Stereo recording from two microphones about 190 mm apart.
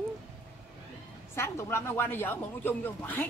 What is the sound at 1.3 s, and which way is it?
Speech, 15° left (ahead or behind).